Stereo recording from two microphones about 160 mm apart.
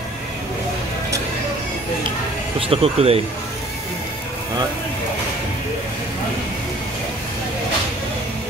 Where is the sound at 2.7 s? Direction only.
40° right (ahead or behind).